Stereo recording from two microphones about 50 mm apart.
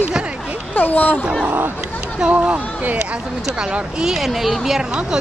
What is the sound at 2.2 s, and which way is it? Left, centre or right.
Speech, right.